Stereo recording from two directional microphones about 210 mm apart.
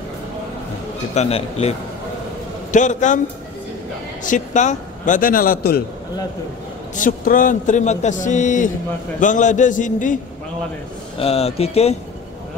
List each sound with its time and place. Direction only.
1.1 s a man's voice: 30° left (ahead or behind)
4.2 s a man's voice: 35° left (ahead or behind)
7.0 s a man's voice: 40° left (ahead or behind)
11.1 s speech: 30° left (ahead or behind)